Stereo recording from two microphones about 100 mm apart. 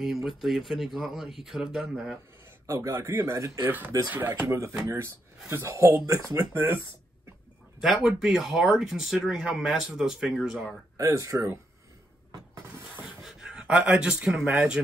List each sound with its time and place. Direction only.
0.0 s speech: 5° right (ahead or behind)
2.6 s speech: 30° right (ahead or behind)
3.6 s speech: 20° right (ahead or behind)
7.8 s speech: 5° right (ahead or behind)
11.0 s speech: 35° right (ahead or behind)
13.2 s speech: 5° right (ahead or behind)